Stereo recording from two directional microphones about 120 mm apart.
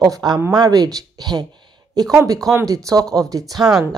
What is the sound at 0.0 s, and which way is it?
Speech, 35° right (ahead or behind).